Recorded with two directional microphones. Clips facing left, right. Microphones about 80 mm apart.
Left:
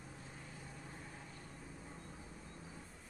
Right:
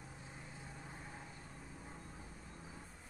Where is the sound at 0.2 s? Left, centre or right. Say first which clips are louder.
Even; centre.